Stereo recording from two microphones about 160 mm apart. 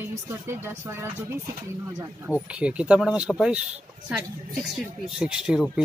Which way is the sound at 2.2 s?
5° right (ahead or behind).